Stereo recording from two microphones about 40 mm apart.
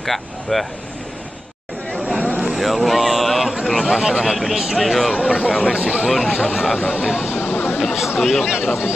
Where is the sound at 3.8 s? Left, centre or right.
Centre.